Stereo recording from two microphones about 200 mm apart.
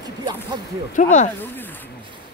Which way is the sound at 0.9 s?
35° left (ahead or behind).